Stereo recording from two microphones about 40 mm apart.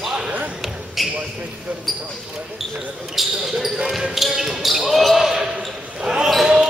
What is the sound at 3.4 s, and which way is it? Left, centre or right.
Basketball bounce, centre.